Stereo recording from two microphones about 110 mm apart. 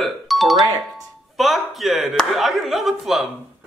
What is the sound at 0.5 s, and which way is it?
Speech, 35° right (ahead or behind).